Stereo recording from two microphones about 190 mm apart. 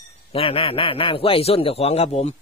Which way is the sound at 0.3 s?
30° left (ahead or behind).